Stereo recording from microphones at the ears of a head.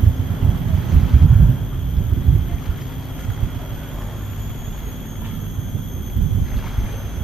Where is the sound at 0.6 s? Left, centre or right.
Right.